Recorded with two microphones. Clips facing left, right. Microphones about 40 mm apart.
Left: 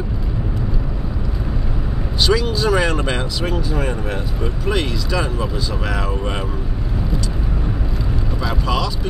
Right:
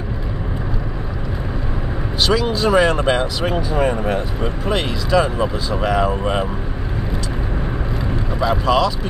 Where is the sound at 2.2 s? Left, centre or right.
Centre.